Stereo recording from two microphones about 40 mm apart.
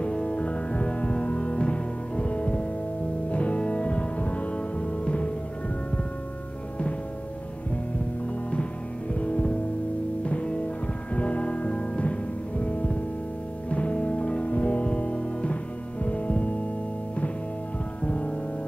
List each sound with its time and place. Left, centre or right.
0.0 s music: left
9.2 s music: left
18.0 s music: left